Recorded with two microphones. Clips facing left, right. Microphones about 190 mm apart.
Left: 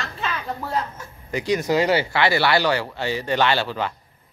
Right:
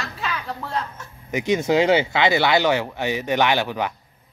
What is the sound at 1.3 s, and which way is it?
Speech, 20° right (ahead or behind).